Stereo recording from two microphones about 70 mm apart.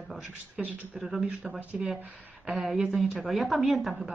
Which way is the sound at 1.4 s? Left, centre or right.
Centre.